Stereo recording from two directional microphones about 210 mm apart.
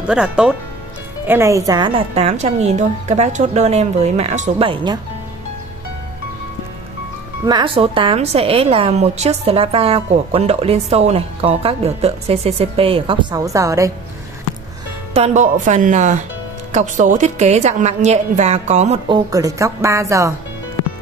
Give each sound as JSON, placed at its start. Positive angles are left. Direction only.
{"t": 0.0, "sound": "a woman's voice", "side_deg": -5}
{"t": 7.4, "sound": "a woman's voice", "side_deg": -20}
{"t": 15.1, "sound": "a woman's voice", "side_deg": -30}